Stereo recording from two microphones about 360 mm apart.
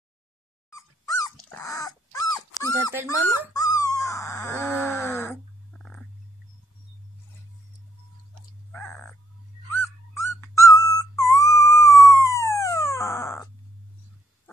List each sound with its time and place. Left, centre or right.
0.7 s dog: centre
8.7 s crow: centre
9.7 s dog: centre
10.8 s a sound: centre